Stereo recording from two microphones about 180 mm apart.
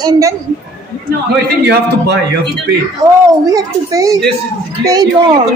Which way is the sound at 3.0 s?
20° right (ahead or behind).